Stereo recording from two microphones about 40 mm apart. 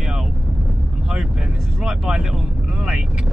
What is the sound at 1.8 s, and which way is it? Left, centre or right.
Speech, centre.